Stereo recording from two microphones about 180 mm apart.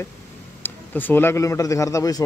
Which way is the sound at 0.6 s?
10° left (ahead or behind).